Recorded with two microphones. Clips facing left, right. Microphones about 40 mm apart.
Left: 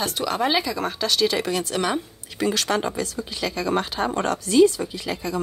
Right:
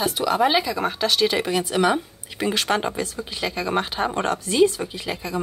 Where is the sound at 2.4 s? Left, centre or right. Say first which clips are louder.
Even; right.